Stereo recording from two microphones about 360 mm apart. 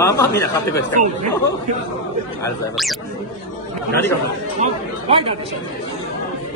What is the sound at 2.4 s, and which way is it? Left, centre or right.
Speech, centre.